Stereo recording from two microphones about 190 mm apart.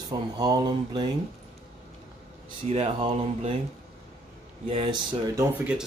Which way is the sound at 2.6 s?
35° right (ahead or behind).